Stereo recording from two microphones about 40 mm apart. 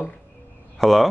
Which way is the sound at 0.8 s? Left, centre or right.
Centre.